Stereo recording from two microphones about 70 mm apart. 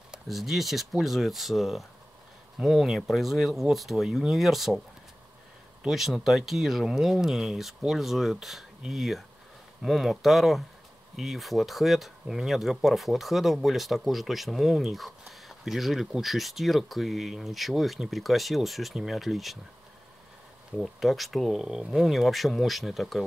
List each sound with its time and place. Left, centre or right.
0.1 s speech: centre
5.9 s speech: centre
20.7 s speech: centre